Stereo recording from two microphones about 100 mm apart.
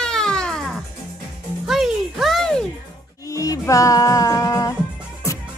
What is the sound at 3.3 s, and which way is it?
Music, 35° left (ahead or behind).